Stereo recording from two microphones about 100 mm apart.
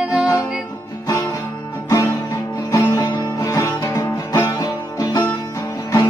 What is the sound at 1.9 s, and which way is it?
Music, 30° left (ahead or behind).